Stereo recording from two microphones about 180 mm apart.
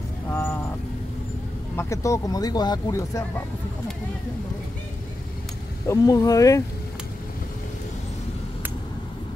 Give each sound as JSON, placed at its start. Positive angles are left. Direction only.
{"t": 0.3, "sound": "vehicle", "side_deg": 10}
{"t": 1.8, "sound": "speech", "side_deg": 15}
{"t": 5.9, "sound": "speech", "side_deg": 20}